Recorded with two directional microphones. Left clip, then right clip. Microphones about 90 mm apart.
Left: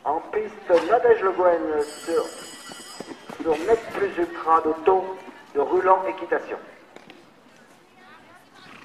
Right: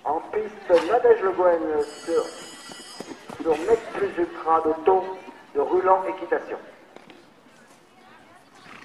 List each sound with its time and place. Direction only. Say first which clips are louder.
0.0 s a man's voice: left 1 dB; 50° left (ahead or behind)
3.0 s a sound: even; 5° right (ahead or behind)
3.4 s speech: even; 5° left (ahead or behind)
3.9 s a man's voice: left 1 dB; 45° left (ahead or behind)